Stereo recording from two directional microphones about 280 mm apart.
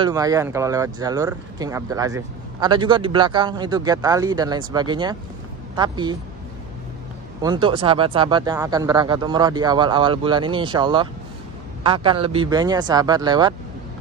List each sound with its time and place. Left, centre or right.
0.0 s speech: centre
7.4 s speech: centre